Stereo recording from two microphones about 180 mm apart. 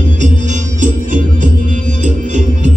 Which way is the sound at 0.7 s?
45° right (ahead or behind).